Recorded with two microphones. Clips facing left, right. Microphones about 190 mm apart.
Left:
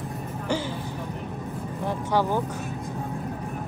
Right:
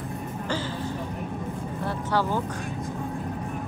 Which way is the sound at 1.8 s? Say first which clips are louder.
Left 2 dB; 15° left (ahead or behind).